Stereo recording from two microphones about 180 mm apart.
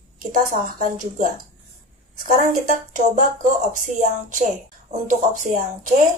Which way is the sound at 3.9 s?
45° right (ahead or behind).